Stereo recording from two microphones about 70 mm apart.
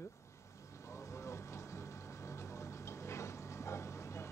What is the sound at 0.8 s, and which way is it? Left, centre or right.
Vehicle, left.